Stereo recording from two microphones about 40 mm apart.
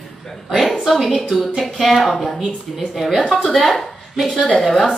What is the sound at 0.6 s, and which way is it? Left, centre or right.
A woman's voice, centre.